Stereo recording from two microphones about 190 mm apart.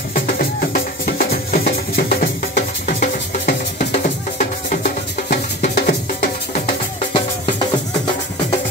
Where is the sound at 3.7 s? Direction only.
40° left (ahead or behind).